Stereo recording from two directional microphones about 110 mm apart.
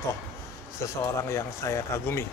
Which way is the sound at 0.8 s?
25° left (ahead or behind).